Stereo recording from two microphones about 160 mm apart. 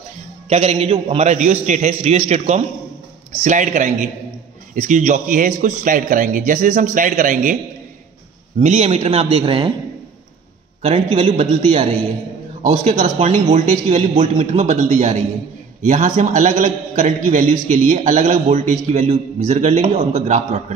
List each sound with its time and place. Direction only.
0.5 s a man's voice: 40° right (ahead or behind)
8.5 s speech: 40° right (ahead or behind)
10.8 s a man's voice: 40° right (ahead or behind)